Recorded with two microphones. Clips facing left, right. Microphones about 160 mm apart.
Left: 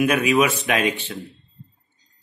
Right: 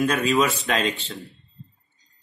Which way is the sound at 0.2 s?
15° left (ahead or behind).